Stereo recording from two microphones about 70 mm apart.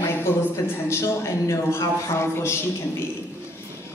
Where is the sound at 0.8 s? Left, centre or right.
Left.